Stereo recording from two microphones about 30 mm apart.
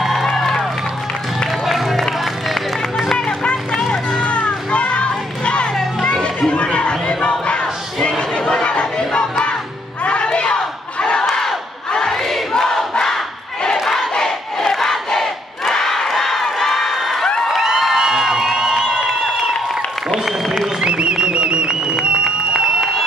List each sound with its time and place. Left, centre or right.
0.0 s run: centre
1.7 s music: centre
3.8 s music: centre
4.2 s music: left
6.2 s chatter: left
7.4 s a sound: left
8.6 s chatter: left
10.0 s music: left
10.5 s battle cry: left
12.1 s crowd: centre
17.6 s a sound: centre
20.8 s a sound: right
22.2 s a sound: right